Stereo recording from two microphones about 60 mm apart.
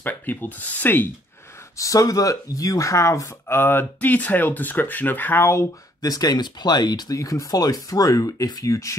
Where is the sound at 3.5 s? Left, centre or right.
Left.